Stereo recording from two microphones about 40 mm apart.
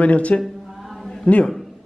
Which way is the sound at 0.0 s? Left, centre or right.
Left.